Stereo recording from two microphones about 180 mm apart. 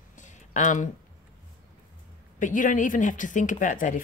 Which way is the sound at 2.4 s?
45° left (ahead or behind).